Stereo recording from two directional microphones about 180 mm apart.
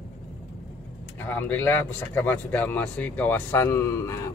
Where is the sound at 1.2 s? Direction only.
10° left (ahead or behind).